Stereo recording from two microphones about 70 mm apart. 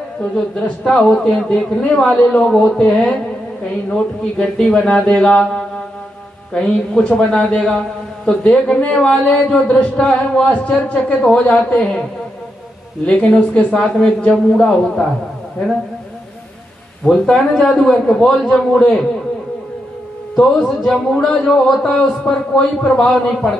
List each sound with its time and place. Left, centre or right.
0.2 s a man's voice: centre
13.0 s a man's voice: centre
17.0 s a man's voice: centre
18.4 s a man's voice: centre
20.3 s a man's voice: centre